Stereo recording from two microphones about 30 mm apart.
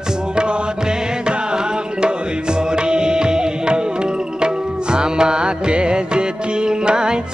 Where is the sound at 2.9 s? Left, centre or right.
Right.